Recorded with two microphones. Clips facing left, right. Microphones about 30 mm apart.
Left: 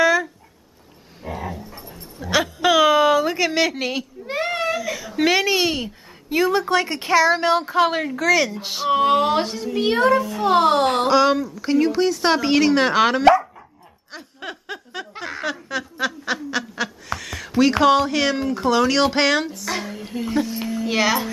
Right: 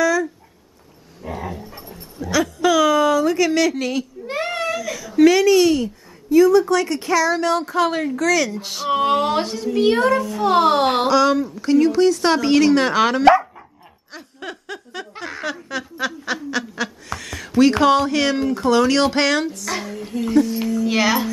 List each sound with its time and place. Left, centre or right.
0.0 s dog: left
1.2 s dog: centre
1.6 s dog: centre
2.1 s a sound: left
4.3 s a sound: centre; by 5.9 s left
6.3 s speech: left; by 8.9 s centre
8.9 s speech: centre
11.1 s speech: centre
14.1 s snicker: centre
17.6 s speech: centre
20.4 s a sound: centre
20.9 s speech: centre